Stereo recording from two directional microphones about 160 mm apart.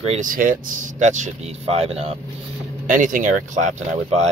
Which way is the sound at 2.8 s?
55° right (ahead or behind).